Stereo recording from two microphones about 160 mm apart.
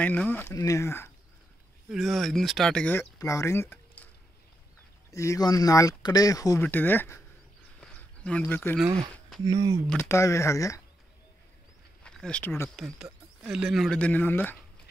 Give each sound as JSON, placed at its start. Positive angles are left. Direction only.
{"t": 0.0, "sound": "speech", "side_deg": 10}
{"t": 1.9, "sound": "speech", "side_deg": 0}
{"t": 5.1, "sound": "speech", "side_deg": 20}
{"t": 7.8, "sound": "a sound", "side_deg": 5}
{"t": 9.4, "sound": "speech", "side_deg": -25}
{"t": 9.8, "sound": "speech", "side_deg": 15}
{"t": 12.0, "sound": "speech", "side_deg": 5}
{"t": 12.7, "sound": "speech", "side_deg": 0}